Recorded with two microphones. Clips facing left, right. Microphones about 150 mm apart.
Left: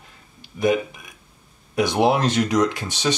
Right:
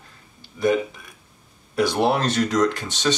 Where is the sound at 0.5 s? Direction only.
15° left (ahead or behind).